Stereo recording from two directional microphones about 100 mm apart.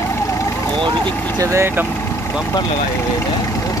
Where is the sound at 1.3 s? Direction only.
30° right (ahead or behind).